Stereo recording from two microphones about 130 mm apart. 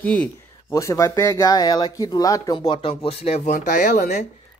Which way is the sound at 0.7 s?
25° left (ahead or behind).